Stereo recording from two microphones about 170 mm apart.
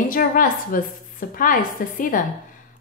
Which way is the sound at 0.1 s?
55° left (ahead or behind).